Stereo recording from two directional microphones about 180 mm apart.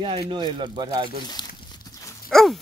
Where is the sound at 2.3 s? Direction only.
Centre (ahead or behind).